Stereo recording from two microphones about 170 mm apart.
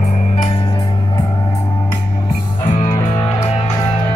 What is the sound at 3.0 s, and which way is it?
Music, 30° left (ahead or behind).